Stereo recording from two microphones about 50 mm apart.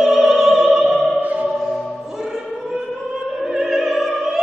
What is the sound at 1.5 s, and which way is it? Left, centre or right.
Music, centre.